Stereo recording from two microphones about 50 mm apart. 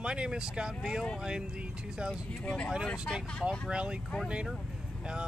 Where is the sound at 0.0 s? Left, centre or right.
Centre.